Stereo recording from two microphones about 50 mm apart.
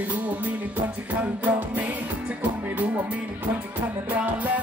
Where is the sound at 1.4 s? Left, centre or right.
Right.